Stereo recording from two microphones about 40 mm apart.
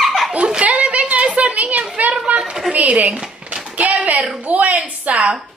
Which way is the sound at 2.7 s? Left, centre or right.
Right.